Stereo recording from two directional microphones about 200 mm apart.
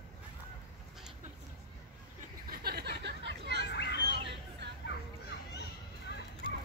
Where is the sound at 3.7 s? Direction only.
55° left (ahead or behind).